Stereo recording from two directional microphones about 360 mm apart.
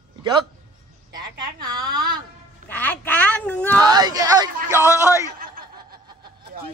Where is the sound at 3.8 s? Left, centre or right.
Centre.